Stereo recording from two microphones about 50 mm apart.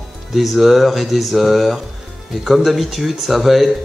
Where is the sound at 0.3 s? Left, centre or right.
Centre.